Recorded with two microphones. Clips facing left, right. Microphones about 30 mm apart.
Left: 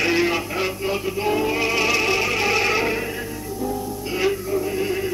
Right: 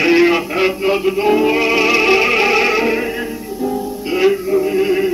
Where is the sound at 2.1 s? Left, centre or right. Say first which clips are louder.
Right 8 dB; right.